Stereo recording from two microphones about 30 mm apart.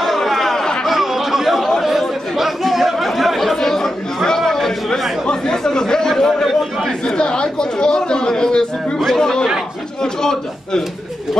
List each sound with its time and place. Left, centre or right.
0.0 s a sound: centre
0.8 s chatter: centre
3.5 s chatter: centre
4.6 s a sound: centre
5.3 s chatter: centre
7.1 s speech: left
8.9 s speech: centre
9.2 s speech: centre